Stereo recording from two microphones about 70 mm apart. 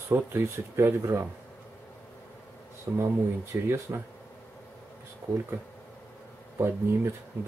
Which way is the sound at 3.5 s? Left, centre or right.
Right.